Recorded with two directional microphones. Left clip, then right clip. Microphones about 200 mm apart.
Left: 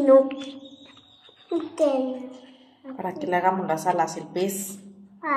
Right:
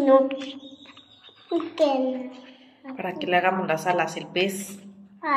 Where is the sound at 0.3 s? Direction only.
10° right (ahead or behind).